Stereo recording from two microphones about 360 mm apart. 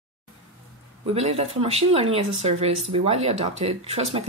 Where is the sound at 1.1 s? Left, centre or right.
Centre.